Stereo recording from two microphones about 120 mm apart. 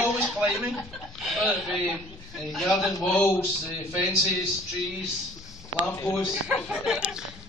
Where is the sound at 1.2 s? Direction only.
Centre (ahead or behind).